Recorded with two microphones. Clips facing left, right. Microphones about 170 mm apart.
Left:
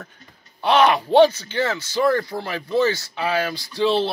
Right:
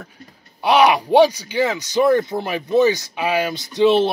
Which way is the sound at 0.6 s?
10° right (ahead or behind).